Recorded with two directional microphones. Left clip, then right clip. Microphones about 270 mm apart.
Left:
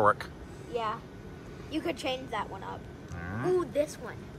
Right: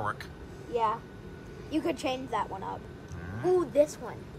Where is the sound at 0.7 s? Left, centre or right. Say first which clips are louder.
Right 4 dB; right.